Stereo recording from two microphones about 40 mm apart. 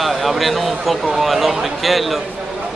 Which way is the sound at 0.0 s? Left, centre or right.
Centre.